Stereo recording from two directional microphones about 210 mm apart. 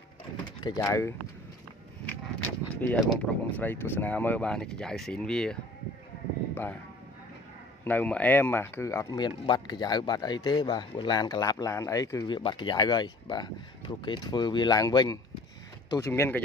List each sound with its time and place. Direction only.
0.7 s speech: 15° left (ahead or behind)
7.8 s speech: 10° left (ahead or behind)